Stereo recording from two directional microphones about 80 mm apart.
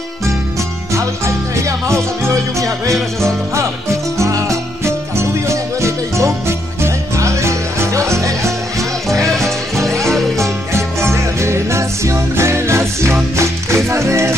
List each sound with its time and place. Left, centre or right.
1.6 s music: right
9.1 s music: centre
10.3 s music: right